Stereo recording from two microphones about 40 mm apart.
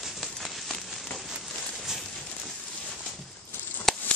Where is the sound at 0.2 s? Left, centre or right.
Centre.